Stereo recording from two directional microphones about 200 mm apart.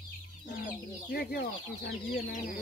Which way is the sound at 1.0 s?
50° left (ahead or behind).